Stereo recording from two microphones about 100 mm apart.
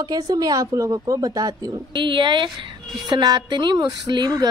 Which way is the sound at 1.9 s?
50° right (ahead or behind).